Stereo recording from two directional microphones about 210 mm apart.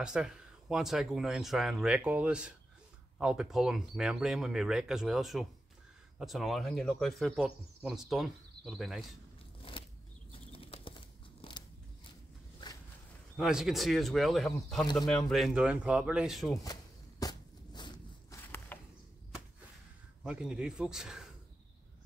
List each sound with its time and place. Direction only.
0.0 s speech: 5° right (ahead or behind)
9.6 s a sound: 25° left (ahead or behind)
13.4 s speech: centre (ahead or behind)
17.2 s a sound: 20° left (ahead or behind)
18.7 s chop: 10° left (ahead or behind)
20.2 s speech: 5° right (ahead or behind)